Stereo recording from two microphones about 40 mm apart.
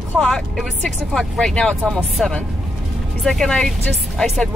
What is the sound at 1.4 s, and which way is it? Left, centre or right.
Speech, centre.